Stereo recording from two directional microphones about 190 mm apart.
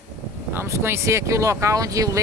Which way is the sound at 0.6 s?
15° right (ahead or behind).